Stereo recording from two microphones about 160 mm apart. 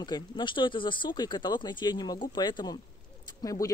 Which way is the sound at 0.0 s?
30° left (ahead or behind).